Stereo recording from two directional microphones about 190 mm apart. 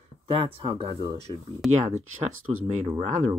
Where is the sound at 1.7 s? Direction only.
35° right (ahead or behind).